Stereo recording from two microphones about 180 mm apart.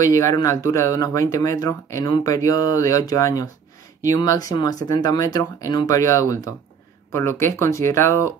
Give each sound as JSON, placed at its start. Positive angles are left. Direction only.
{"t": 0.0, "sound": "speech", "side_deg": 15}